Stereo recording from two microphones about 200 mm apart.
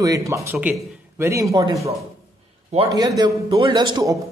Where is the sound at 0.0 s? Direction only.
15° right (ahead or behind).